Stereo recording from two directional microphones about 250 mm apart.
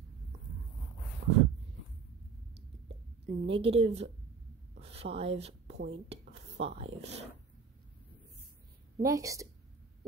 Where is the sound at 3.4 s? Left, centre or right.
Right.